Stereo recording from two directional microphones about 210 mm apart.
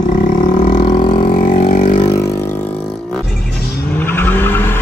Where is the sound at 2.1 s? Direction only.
15° left (ahead or behind).